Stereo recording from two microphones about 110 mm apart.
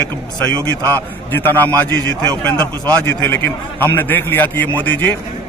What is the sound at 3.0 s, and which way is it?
A man's voice, 20° left (ahead or behind).